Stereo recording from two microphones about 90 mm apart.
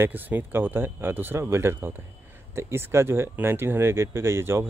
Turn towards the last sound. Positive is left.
turn(degrees=-25)  # may be behind; listen again after turning